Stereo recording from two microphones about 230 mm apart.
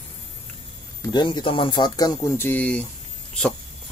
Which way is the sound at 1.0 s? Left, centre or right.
Centre.